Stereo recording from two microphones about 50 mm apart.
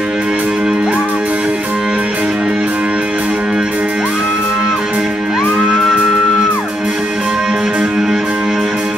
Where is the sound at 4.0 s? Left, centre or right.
Centre.